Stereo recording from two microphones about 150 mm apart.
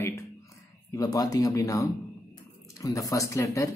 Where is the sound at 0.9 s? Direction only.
25° left (ahead or behind).